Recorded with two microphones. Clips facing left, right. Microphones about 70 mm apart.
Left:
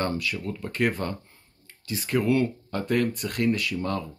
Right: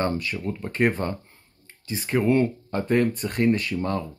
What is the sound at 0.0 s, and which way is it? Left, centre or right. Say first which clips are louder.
Speech: right 2 dB; right.